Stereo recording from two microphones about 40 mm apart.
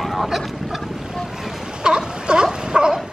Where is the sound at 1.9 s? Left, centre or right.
Right.